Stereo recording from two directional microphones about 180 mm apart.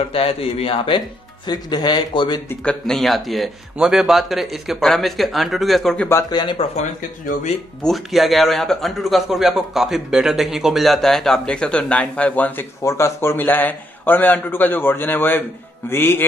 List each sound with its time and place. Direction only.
0.1 s speech: 30° left (ahead or behind)
2.6 s a man's voice: 5° left (ahead or behind)
6.0 s speech: 15° left (ahead or behind)
6.4 s speech: 30° left (ahead or behind)
7.8 s a man's voice: centre (ahead or behind)